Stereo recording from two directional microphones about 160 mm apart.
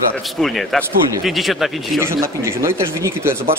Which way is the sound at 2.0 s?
15° right (ahead or behind).